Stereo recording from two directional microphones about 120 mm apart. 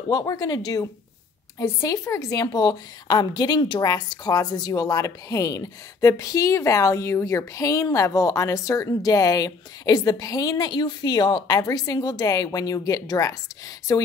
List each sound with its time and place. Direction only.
0.1 s speech: 30° left (ahead or behind)
1.6 s a woman's voice: 25° left (ahead or behind)